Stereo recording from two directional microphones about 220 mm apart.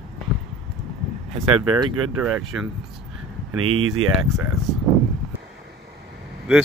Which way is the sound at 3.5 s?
75° right (ahead or behind).